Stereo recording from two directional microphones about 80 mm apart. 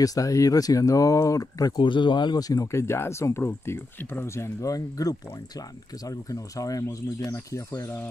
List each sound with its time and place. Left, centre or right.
0.0 s speech: left
1.8 s speech: left
4.6 s speech: left